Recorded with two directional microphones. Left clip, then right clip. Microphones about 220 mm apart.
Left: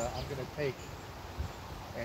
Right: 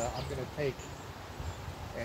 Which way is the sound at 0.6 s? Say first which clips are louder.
Right 1 dB; 10° right (ahead or behind).